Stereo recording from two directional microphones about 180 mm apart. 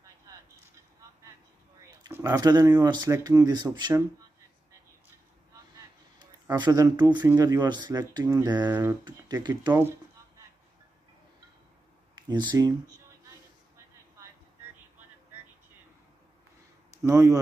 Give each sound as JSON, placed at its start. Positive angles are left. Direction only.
{"t": 2.0, "sound": "speech", "side_deg": -15}
{"t": 6.1, "sound": "speech", "side_deg": -20}
{"t": 9.1, "sound": "speech", "side_deg": -20}
{"t": 9.7, "sound": "speech", "side_deg": -10}
{"t": 12.2, "sound": "speech", "side_deg": -25}
{"t": 13.7, "sound": "vehicle", "side_deg": -15}
{"t": 17.0, "sound": "speech", "side_deg": -20}